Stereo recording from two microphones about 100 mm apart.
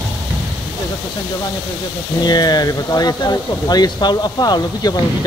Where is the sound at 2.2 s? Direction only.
45° left (ahead or behind).